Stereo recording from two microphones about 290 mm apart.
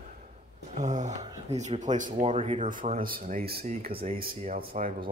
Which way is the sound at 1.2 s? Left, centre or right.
Centre.